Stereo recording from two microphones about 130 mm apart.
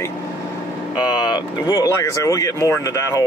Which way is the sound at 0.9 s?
35° left (ahead or behind).